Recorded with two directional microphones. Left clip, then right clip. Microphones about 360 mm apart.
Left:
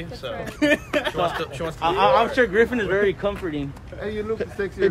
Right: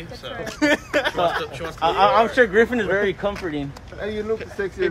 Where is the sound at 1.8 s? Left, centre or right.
Right.